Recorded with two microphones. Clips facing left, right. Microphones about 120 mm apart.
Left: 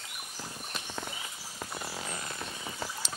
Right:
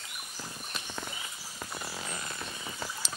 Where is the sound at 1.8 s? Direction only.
35° left (ahead or behind).